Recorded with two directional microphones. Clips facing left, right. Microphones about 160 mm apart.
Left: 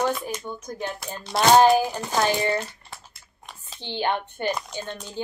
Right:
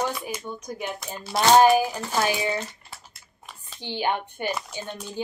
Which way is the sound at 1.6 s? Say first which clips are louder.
Even; 10° right (ahead or behind).